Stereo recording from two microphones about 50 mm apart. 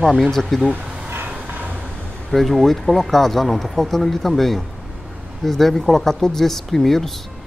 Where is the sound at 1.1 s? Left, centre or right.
Right.